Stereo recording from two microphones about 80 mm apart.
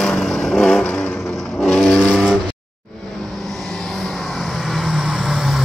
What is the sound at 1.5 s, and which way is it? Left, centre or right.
Vehicle, centre.